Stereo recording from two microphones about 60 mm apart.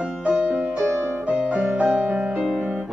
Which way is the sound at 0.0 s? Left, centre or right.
Centre.